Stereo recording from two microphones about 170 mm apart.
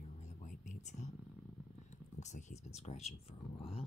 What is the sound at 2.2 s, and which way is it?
Speech, 45° left (ahead or behind).